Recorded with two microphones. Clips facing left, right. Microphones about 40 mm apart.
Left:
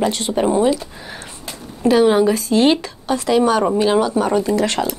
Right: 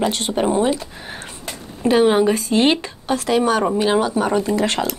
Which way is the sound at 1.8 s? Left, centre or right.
Right.